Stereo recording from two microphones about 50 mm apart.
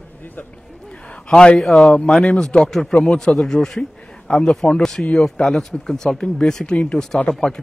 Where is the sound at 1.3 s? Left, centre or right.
Centre.